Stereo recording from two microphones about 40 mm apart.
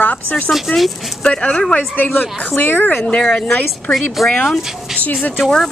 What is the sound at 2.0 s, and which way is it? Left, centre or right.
Speech, left.